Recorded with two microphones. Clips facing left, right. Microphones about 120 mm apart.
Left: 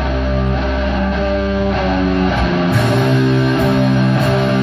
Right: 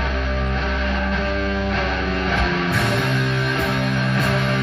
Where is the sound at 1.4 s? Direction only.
15° left (ahead or behind).